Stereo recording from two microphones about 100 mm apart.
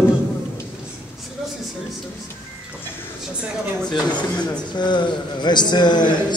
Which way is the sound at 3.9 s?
45° left (ahead or behind).